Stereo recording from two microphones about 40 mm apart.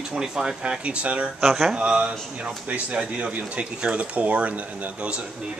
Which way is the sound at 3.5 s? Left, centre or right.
Right.